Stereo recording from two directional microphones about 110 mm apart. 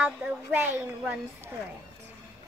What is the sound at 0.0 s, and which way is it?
A woman's voice, 15° right (ahead or behind).